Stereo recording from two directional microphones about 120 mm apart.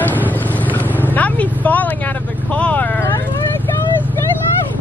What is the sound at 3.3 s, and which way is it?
Vehicle, 25° left (ahead or behind).